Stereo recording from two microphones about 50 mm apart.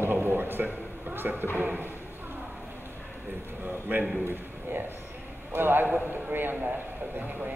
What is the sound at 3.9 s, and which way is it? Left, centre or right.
A man's voice, right.